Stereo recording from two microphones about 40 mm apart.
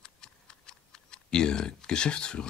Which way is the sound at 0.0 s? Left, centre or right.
Left.